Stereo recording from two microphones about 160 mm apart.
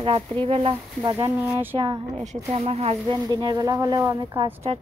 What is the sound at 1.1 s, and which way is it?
Speech, 20° right (ahead or behind).